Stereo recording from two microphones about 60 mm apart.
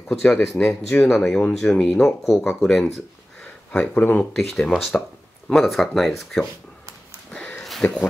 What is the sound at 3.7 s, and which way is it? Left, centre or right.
Speech, left.